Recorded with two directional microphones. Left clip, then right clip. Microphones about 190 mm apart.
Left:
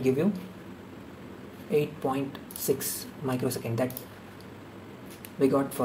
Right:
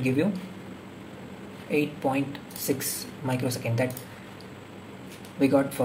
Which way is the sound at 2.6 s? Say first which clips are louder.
Left 1 dB; 30° left (ahead or behind).